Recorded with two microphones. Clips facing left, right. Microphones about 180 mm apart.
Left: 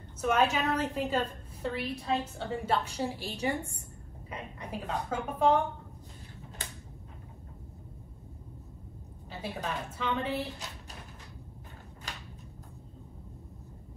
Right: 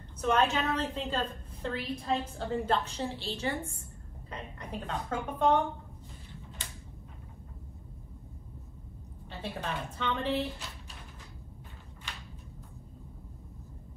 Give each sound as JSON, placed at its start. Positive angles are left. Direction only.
{"t": 0.2, "sound": "a woman's voice", "side_deg": 5}
{"t": 9.3, "sound": "a woman's voice", "side_deg": 5}